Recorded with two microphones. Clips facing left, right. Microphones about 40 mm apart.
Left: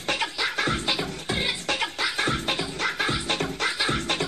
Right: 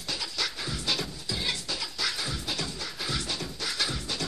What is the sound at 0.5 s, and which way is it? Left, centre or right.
Music, left.